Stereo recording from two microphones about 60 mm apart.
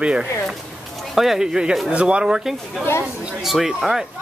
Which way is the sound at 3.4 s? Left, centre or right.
Centre.